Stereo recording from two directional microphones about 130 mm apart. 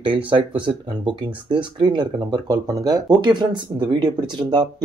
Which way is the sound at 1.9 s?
35° right (ahead or behind).